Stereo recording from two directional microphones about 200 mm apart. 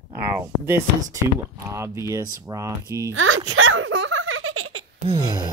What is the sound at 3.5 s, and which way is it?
Giggle, 90° right.